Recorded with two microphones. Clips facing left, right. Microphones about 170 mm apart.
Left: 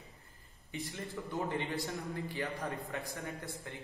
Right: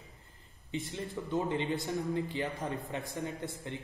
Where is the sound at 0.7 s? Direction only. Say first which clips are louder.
Right 4 dB; 20° right (ahead or behind).